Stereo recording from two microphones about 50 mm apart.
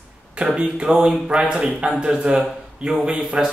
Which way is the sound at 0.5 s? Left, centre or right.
Right.